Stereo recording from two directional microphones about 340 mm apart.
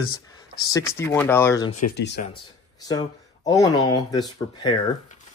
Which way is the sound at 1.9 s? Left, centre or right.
Left.